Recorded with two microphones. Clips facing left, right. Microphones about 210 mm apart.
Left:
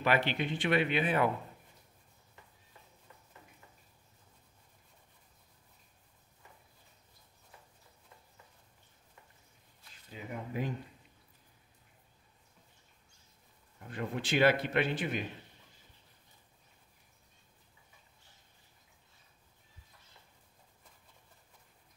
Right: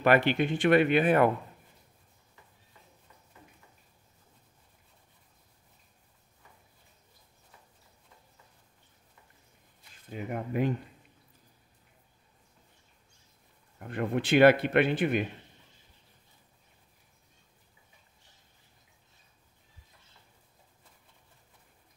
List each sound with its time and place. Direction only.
0.0 s speech: 50° right (ahead or behind)
10.0 s a man's voice: 60° right (ahead or behind)
13.7 s a man's voice: 60° right (ahead or behind)